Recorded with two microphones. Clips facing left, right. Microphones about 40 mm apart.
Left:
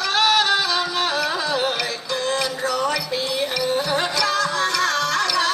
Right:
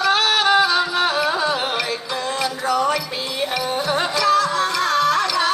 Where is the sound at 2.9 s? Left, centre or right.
Centre.